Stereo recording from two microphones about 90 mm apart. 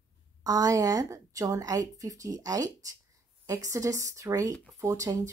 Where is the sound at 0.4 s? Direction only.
45° right (ahead or behind).